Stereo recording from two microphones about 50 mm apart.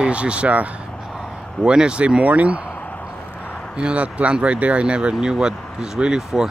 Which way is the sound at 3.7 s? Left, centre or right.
Right.